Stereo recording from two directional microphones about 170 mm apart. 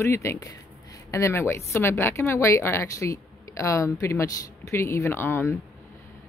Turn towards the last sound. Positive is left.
turn(degrees=15)  # may be behind; listen again after turning